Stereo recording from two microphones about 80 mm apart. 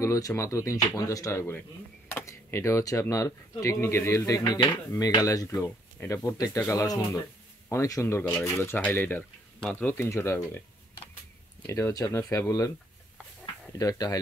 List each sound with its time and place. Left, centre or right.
0.0 s speech: left
2.0 s speech: left
4.5 s speech: left
4.9 s speech: left
5.6 s speech: left
11.6 s speech: left
13.7 s speech: left